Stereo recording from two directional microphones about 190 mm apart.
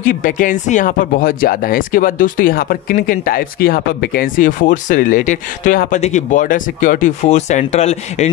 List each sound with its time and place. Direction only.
0.0 s speech: 45° left (ahead or behind)